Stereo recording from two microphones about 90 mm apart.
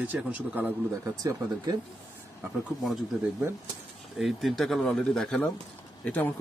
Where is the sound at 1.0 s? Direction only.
40° right (ahead or behind).